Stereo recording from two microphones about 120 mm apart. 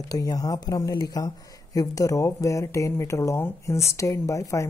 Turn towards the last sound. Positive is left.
turn(degrees=25)  # may be behind; listen again after turning